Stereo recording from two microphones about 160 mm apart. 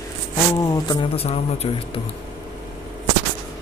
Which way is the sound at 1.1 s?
40° left (ahead or behind).